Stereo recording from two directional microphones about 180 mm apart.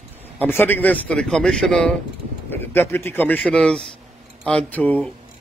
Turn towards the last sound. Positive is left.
turn(degrees=10)  # may be behind; listen again after turning